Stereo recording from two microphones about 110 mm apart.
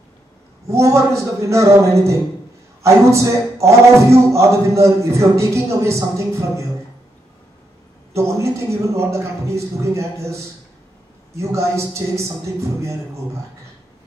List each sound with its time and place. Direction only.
0.7 s speech: 25° right (ahead or behind)
8.1 s speech: 25° right (ahead or behind)